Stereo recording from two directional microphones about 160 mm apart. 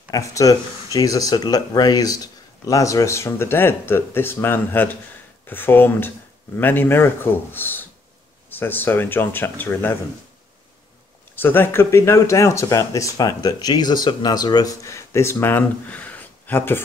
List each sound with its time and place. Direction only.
0.1 s speech: 20° left (ahead or behind)
11.3 s speech: 15° left (ahead or behind)